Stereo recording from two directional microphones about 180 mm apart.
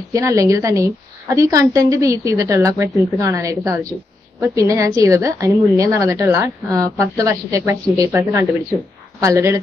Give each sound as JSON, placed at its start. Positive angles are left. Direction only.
{"t": 0.1, "sound": "a woman's voice", "side_deg": -15}